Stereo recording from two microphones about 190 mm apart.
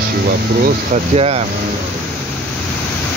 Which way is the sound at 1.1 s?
30° right (ahead or behind).